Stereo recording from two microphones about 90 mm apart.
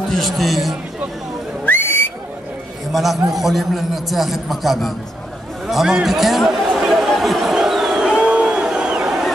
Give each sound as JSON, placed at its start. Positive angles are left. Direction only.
{"t": 0.1, "sound": "a man's voice", "side_deg": 0}
{"t": 1.7, "sound": "whistle", "side_deg": 25}
{"t": 2.9, "sound": "a man's voice", "side_deg": 0}
{"t": 5.7, "sound": "chatter", "side_deg": -5}